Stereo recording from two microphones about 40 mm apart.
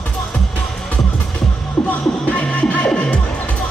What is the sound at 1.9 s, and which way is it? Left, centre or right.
Music, left.